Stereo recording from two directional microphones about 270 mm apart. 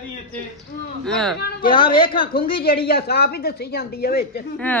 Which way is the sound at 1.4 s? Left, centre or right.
Left.